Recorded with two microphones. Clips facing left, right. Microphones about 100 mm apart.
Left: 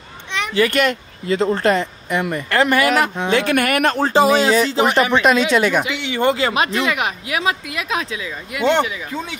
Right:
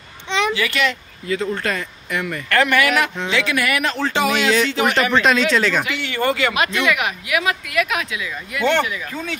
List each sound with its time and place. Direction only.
0.3 s a sound: 90° right
0.6 s a child's voice: 45° left (ahead or behind)
1.3 s speech: 30° left (ahead or behind)
3.3 s speech: 50° left (ahead or behind)
4.1 s speech: 35° left (ahead or behind)
4.9 s speech: 15° left (ahead or behind)